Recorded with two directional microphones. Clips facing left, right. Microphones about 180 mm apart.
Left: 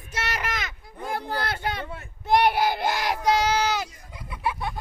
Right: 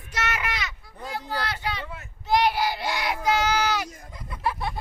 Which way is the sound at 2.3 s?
55° left (ahead or behind).